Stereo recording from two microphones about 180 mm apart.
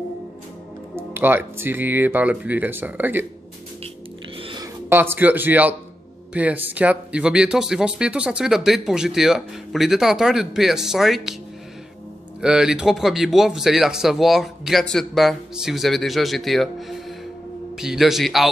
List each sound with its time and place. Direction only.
0.9 s speech: 10° right (ahead or behind)
4.4 s a sound: 30° right (ahead or behind)
4.8 s speech: 10° right (ahead or behind)
12.4 s speech: 5° right (ahead or behind)